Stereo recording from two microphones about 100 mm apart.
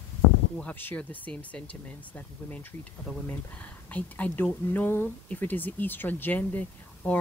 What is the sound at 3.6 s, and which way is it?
Speech, 15° left (ahead or behind).